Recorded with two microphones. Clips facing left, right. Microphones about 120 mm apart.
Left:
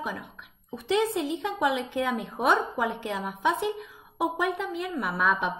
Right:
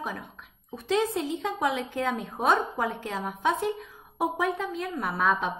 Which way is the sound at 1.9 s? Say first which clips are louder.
Left 1 dB; 5° left (ahead or behind).